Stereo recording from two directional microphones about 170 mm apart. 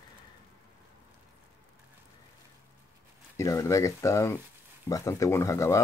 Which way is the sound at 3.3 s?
15° left (ahead or behind).